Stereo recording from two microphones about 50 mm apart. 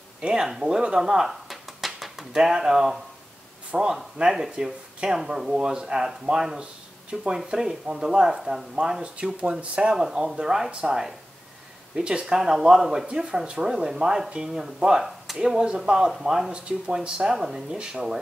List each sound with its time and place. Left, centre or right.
0.2 s speech: centre
1.5 s a sound: centre
3.7 s speech: centre
9.9 s speech: centre
17.3 s speech: centre